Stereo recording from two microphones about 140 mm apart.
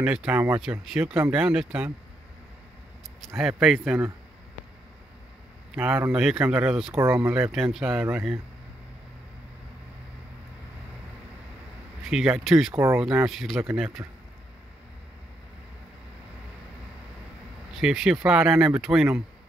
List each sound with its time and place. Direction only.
0.0 s speech: 10° right (ahead or behind)
3.3 s speech: 5° right (ahead or behind)
6.0 s speech: 5° right (ahead or behind)
12.0 s speech: 5° right (ahead or behind)
12.7 s speech: 20° right (ahead or behind)
13.0 s speech: 5° right (ahead or behind)
13.6 s speech: 15° right (ahead or behind)
17.7 s speech: 5° right (ahead or behind)